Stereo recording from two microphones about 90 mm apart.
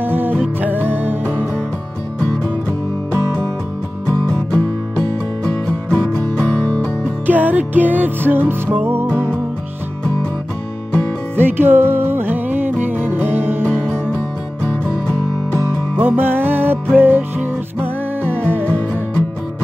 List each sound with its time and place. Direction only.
0.0 s music: 20° right (ahead or behind)
2.1 s music: 10° left (ahead or behind)
5.7 s music: 10° left (ahead or behind)
7.2 s music: 20° right (ahead or behind)
11.3 s music: 25° right (ahead or behind)
14.1 s music: 15° left (ahead or behind)
15.5 s music: 25° right (ahead or behind)
18.6 s music: 15° left (ahead or behind)